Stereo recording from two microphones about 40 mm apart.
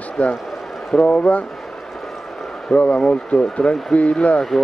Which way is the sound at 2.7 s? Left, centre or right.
Left.